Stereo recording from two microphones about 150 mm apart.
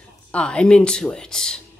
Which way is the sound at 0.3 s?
5° left (ahead or behind).